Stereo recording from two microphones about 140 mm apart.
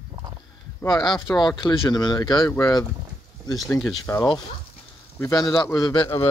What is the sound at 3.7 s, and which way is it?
Speech, 15° left (ahead or behind).